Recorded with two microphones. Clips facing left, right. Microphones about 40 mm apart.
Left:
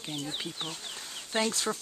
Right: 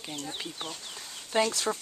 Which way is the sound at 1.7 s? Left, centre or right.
Centre.